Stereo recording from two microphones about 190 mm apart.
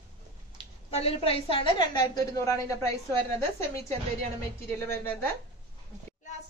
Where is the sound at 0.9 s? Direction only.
30° left (ahead or behind); by 2.7 s 15° left (ahead or behind).